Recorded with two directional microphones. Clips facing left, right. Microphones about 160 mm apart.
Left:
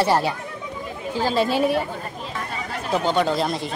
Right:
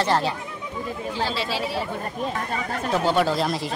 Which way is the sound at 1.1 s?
45° left (ahead or behind).